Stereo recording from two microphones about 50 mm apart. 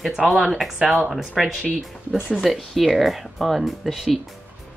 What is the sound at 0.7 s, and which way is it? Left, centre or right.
Speech, centre.